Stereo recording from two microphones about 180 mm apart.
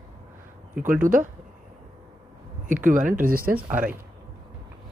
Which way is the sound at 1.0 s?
50° right (ahead or behind).